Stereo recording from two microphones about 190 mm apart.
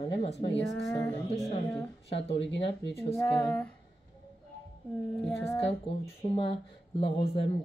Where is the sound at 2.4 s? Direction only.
65° left (ahead or behind).